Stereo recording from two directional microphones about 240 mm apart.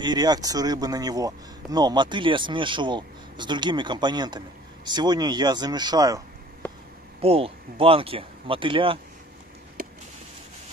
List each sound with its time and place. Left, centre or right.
0.0 s speech: centre